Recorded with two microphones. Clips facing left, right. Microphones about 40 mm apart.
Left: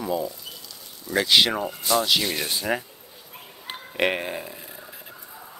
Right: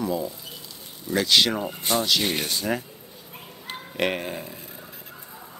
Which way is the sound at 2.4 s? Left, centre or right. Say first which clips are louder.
Left 1 dB; centre.